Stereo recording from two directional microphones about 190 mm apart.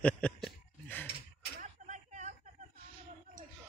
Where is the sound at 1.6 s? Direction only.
40° right (ahead or behind).